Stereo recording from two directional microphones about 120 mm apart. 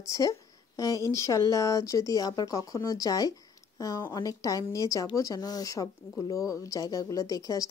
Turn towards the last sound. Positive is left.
turn(degrees=30)  # may be behind; listen again after turning